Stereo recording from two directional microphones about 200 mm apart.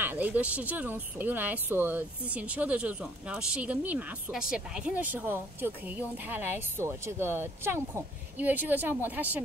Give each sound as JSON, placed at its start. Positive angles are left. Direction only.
{"t": 0.0, "sound": "speech", "side_deg": -10}